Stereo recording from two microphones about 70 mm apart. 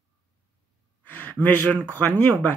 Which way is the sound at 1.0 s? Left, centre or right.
Left.